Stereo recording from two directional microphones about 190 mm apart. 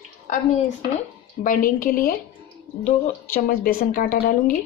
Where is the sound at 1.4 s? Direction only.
45° left (ahead or behind).